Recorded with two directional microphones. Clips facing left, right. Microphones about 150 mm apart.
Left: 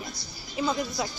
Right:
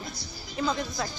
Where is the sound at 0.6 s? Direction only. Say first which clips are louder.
Left 1 dB; 5° left (ahead or behind).